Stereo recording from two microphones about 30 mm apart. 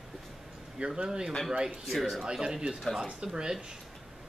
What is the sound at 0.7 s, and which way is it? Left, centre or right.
Speech, right.